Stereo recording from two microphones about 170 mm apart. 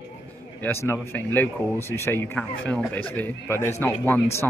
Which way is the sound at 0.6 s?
15° left (ahead or behind).